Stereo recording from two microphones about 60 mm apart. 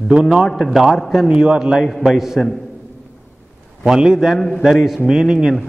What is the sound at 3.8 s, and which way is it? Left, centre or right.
Speech, centre.